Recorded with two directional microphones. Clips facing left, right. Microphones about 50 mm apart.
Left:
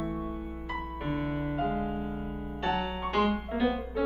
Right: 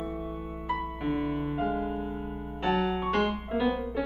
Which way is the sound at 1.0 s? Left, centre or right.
Centre.